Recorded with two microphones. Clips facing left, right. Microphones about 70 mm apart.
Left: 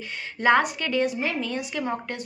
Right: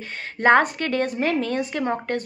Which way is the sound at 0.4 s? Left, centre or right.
Right.